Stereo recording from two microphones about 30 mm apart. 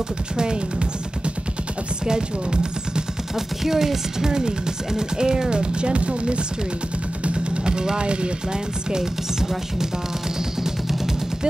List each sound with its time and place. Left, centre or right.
0.4 s speech: right
2.0 s speech: right
3.3 s chopping: centre
4.3 s speech: right
7.6 s speech: right